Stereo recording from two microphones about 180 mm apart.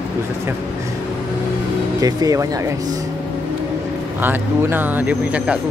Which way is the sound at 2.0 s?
20° right (ahead or behind).